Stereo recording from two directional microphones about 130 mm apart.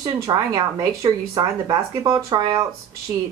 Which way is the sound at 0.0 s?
30° right (ahead or behind).